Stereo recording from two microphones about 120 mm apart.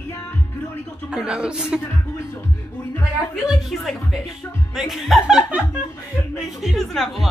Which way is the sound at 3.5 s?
Centre (ahead or behind).